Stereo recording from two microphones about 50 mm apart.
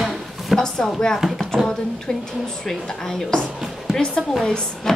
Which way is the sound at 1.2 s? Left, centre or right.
Centre.